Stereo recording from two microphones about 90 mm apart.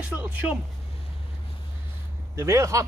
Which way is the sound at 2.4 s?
35° right (ahead or behind).